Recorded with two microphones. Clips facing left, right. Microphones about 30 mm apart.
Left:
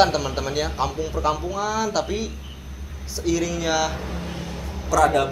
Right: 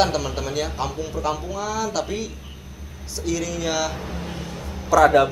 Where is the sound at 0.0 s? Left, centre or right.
Centre.